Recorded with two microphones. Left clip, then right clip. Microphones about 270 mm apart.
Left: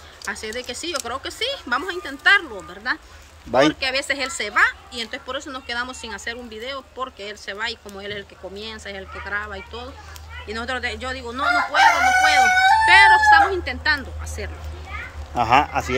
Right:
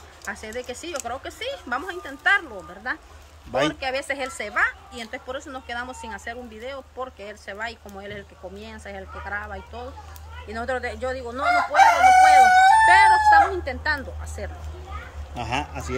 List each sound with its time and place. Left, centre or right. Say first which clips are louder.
0.2 s a woman's voice: left 4 dB; centre
15.3 s a man's voice: left 11 dB; centre